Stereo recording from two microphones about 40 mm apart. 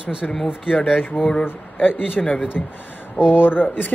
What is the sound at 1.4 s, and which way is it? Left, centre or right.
Speech, left.